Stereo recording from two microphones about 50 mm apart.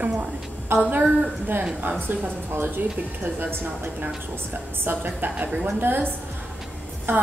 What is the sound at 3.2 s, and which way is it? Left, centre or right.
A woman's voice, right.